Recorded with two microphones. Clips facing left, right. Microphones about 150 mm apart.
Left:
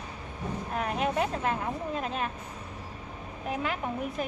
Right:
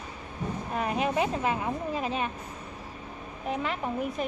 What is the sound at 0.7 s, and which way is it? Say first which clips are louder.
Speech: right 1 dB; centre (ahead or behind).